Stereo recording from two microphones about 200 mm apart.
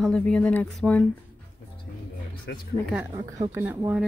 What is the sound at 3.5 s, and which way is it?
Speech, 10° right (ahead or behind).